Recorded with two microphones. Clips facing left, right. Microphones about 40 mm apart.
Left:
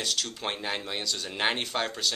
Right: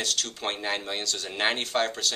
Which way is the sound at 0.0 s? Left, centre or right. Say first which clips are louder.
Right 1 dB; centre.